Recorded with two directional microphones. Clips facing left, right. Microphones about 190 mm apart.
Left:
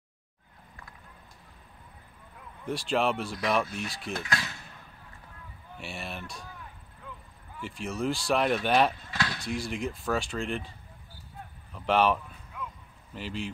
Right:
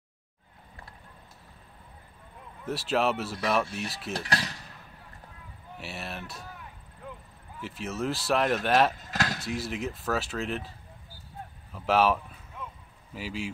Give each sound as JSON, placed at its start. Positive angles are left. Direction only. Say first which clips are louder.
{"t": 2.6, "sound": "speech", "louder": "right 1 dB", "side_deg": -5}
{"t": 4.1, "sound": "a sound", "louder": "right 2 dB", "side_deg": -35}
{"t": 5.8, "sound": "a sound", "louder": "even", "side_deg": 0}
{"t": 7.6, "sound": "speech", "louder": "left 1 dB", "side_deg": 0}
{"t": 8.9, "sound": "speech", "louder": "right 2 dB", "side_deg": -40}
{"t": 9.6, "sound": "speech", "louder": "even", "side_deg": -5}
{"t": 11.7, "sound": "speech", "louder": "right 1 dB", "side_deg": -5}